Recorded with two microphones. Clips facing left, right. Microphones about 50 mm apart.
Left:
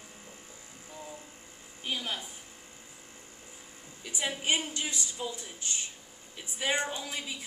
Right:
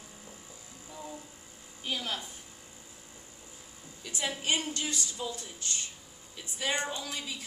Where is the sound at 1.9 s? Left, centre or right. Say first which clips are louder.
Even; centre.